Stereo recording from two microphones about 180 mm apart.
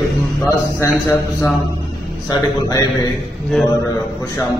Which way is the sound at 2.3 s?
20° left (ahead or behind).